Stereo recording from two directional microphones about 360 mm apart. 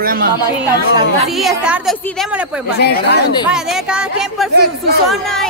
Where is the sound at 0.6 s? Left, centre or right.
Centre.